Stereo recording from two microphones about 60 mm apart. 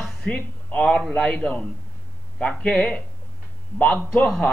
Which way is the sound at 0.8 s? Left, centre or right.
Centre.